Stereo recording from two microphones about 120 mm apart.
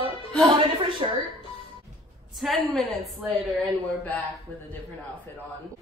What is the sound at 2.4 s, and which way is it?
Speech, 5° right (ahead or behind).